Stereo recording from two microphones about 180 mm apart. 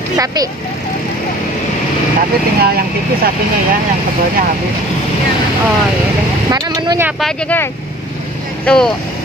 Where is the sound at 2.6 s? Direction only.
60° right (ahead or behind).